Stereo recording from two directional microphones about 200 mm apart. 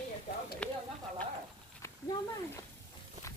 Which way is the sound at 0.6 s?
5° left (ahead or behind).